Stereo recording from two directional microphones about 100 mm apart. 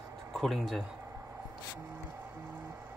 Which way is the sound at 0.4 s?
Centre (ahead or behind).